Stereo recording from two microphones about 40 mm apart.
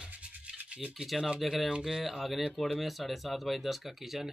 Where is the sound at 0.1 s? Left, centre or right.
Right.